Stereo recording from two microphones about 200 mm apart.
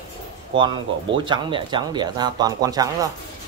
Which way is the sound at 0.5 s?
25° right (ahead or behind).